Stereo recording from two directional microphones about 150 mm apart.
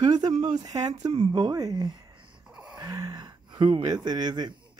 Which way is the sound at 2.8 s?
25° right (ahead or behind).